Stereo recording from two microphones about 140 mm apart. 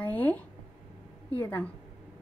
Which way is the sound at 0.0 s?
10° left (ahead or behind).